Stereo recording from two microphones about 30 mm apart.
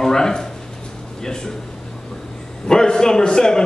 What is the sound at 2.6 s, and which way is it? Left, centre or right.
A man's voice, left.